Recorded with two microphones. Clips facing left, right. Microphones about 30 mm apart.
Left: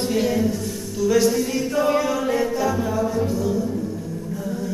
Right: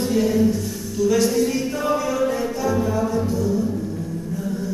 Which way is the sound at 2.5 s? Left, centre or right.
Centre.